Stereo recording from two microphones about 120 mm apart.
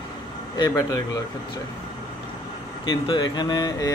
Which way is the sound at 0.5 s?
30° left (ahead or behind).